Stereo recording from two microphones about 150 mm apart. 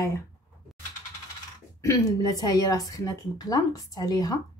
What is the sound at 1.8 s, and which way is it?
A woman's voice, 20° left (ahead or behind).